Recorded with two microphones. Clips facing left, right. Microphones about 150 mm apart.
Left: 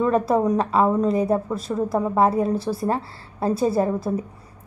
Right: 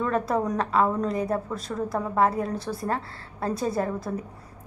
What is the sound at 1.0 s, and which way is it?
Speech, 30° left (ahead or behind).